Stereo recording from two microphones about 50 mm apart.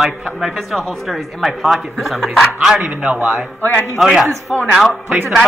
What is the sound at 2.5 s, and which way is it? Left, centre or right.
A man's voice, centre.